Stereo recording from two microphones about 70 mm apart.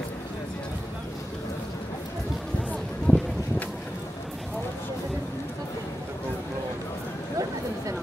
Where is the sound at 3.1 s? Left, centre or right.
Centre.